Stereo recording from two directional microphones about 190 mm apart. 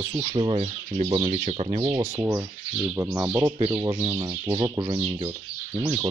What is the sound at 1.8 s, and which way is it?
Speech, 15° right (ahead or behind).